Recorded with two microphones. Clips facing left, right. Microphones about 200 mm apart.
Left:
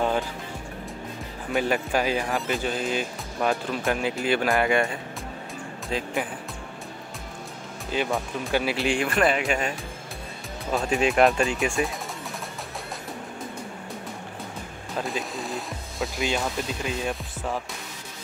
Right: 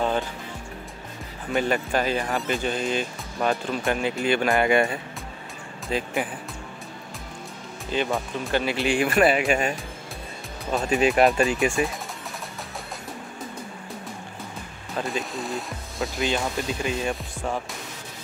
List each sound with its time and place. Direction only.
1.5 s speech: 5° left (ahead or behind)
5.9 s speech: centre (ahead or behind)
7.9 s speech: 5° left (ahead or behind)
10.7 s speech: centre (ahead or behind)
15.0 s speech: centre (ahead or behind)